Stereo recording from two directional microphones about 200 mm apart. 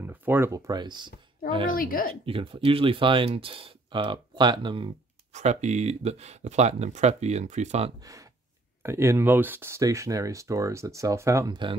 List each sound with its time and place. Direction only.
0.0 s speech: 10° right (ahead or behind)
1.8 s speech: 45° left (ahead or behind)
2.2 s speech: 25° right (ahead or behind)
5.3 s speech: 35° right (ahead or behind)
8.0 s speech: 15° right (ahead or behind)